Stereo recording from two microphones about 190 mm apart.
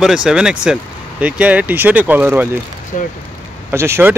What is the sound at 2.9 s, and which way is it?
Speech, 45° left (ahead or behind).